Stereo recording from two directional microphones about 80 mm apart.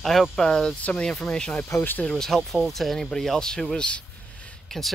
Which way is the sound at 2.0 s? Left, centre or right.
Centre.